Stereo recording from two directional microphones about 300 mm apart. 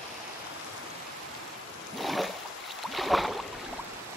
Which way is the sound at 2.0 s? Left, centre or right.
Centre.